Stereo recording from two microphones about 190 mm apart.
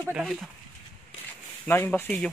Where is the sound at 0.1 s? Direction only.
5° right (ahead or behind).